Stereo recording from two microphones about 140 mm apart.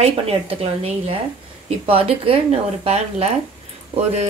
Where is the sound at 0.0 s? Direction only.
45° right (ahead or behind).